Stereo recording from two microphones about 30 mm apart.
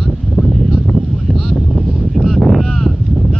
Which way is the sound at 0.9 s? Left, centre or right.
Centre.